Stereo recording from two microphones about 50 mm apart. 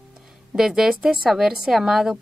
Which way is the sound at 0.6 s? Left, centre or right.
Centre.